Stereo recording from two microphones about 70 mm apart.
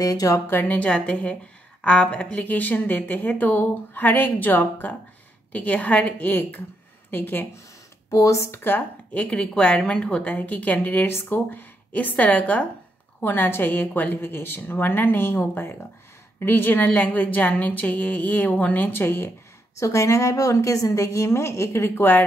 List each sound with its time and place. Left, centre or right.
0.0 s speech: left
0.5 s a woman's voice: left
8.1 s a woman's voice: left
8.6 s a woman's voice: left
19.8 s a woman's voice: left